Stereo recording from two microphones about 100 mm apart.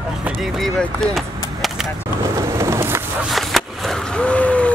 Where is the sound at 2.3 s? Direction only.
30° right (ahead or behind).